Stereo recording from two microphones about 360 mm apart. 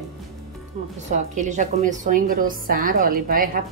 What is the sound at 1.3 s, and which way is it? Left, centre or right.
A woman's voice, centre.